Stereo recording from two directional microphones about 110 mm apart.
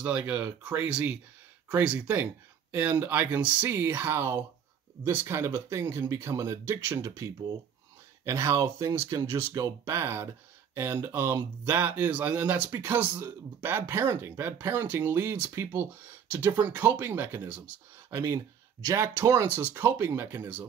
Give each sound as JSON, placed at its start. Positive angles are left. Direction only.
{"t": 0.0, "sound": "speech", "side_deg": -10}
{"t": 0.8, "sound": "speech", "side_deg": -10}
{"t": 18.1, "sound": "speech", "side_deg": -30}